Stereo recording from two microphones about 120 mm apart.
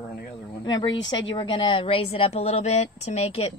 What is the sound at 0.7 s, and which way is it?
A woman's voice, 35° left (ahead or behind).